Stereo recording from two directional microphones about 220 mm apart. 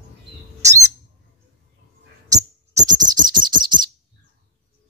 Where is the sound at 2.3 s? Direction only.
15° right (ahead or behind).